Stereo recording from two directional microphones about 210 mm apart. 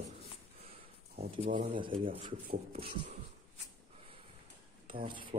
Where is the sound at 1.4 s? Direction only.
25° right (ahead or behind).